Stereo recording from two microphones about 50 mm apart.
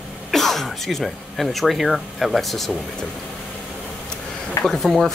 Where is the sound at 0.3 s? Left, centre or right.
Centre.